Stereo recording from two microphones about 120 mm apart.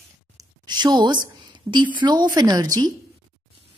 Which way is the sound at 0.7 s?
35° right (ahead or behind).